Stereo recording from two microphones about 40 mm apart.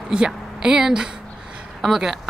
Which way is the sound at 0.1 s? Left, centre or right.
Centre.